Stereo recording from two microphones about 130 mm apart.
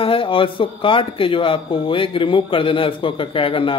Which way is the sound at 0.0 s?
45° left (ahead or behind).